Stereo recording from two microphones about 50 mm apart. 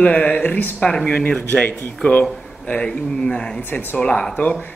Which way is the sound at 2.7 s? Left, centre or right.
Centre.